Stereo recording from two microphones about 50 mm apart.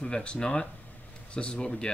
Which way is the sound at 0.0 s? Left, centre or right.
Left.